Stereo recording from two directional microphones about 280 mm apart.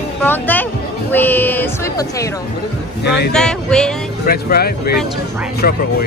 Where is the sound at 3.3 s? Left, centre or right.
Centre.